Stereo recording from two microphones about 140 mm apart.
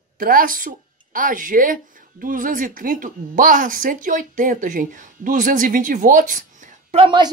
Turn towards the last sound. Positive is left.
turn(degrees=-40)  # may be behind; listen again after turning